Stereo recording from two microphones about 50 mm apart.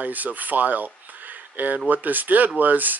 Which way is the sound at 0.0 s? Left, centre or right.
Right.